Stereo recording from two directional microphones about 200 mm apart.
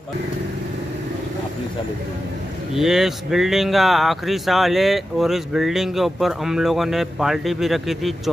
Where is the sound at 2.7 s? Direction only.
Centre (ahead or behind).